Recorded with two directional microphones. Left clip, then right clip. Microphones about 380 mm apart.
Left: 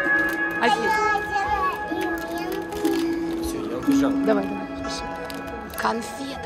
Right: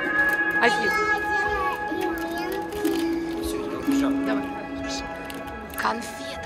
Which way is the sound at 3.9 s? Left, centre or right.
Left.